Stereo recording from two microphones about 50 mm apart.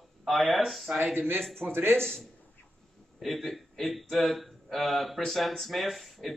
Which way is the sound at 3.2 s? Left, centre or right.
Centre.